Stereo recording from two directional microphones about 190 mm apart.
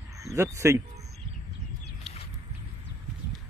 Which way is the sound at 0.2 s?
15° right (ahead or behind).